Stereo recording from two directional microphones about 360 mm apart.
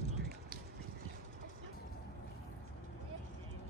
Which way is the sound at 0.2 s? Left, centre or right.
Right.